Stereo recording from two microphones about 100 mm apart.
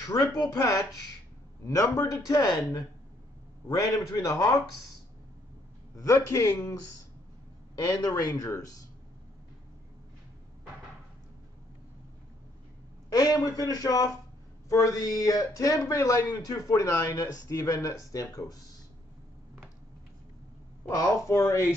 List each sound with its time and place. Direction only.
0.0 s speech: 35° left (ahead or behind)
3.6 s speech: 35° left (ahead or behind)
5.9 s a man's voice: 30° left (ahead or behind)
13.1 s speech: 40° left (ahead or behind)
20.9 s speech: 35° left (ahead or behind)